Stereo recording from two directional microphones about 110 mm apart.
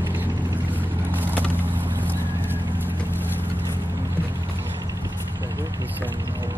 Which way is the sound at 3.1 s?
20° left (ahead or behind).